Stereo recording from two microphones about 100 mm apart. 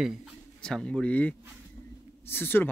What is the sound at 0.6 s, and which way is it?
Speech, 5° left (ahead or behind).